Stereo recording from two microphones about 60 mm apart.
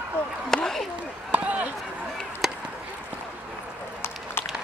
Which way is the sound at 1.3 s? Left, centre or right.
Right.